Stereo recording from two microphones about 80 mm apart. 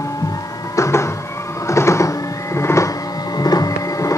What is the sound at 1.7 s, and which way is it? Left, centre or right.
Music, left.